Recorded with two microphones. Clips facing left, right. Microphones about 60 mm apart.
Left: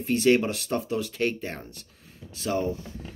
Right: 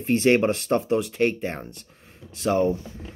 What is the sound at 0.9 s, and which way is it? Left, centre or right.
Speech, right.